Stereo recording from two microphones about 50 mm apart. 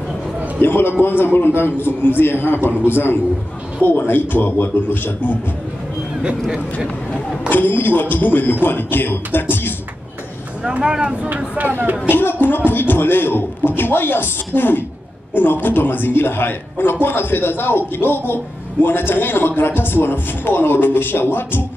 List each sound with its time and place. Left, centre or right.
0.6 s a man's voice: left
7.4 s speech: left
10.8 s speech: centre
11.2 s speech: right
12.1 s speech: left